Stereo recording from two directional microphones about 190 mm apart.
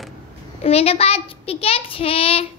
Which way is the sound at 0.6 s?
30° left (ahead or behind).